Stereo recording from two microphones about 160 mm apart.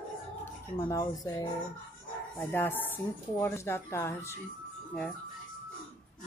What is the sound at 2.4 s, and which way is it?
Speech, 10° left (ahead or behind).